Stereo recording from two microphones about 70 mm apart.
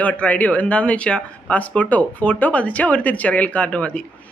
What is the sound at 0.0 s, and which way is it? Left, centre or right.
Speech, left.